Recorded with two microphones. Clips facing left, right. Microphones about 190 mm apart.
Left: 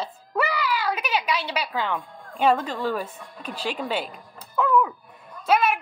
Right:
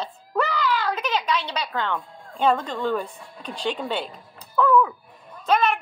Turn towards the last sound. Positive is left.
turn(degrees=10)  # may be behind; listen again after turning